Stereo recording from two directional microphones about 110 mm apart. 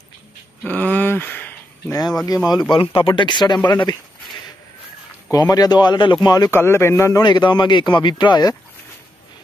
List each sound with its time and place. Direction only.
0.7 s a sound: 15° left (ahead or behind)
2.2 s speech: 35° left (ahead or behind)
2.7 s speech: 55° left (ahead or behind)
3.1 s speech: 45° left (ahead or behind)
5.3 s speech: 35° left (ahead or behind)
6.5 s speech: 25° left (ahead or behind)
7.2 s speech: 45° left (ahead or behind)